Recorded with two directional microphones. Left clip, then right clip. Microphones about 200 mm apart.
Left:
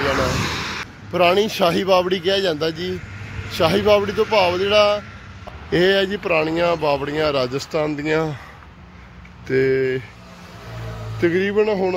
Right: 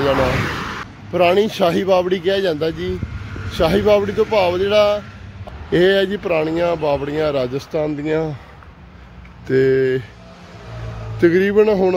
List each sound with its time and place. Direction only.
0.5 s speech: 10° right (ahead or behind)
9.5 s a man's voice: 20° right (ahead or behind)
11.1 s a man's voice: 25° right (ahead or behind)